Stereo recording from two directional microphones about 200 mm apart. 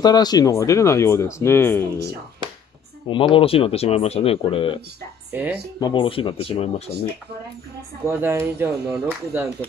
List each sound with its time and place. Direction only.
0.0 s speech: 20° left (ahead or behind)
3.1 s speech: 25° left (ahead or behind)
5.3 s speech: 10° right (ahead or behind)
5.8 s speech: 25° left (ahead or behind)
8.1 s speech: 10° right (ahead or behind)